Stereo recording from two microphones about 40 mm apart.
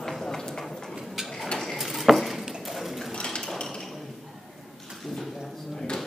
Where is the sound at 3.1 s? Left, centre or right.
Left.